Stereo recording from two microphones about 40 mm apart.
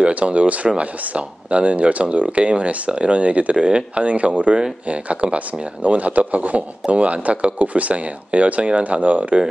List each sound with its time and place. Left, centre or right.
0.0 s speech: right